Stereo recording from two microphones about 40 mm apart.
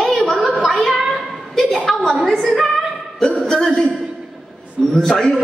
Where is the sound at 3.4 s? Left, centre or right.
Centre.